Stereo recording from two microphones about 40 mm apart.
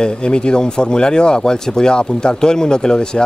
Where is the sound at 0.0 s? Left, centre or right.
Left.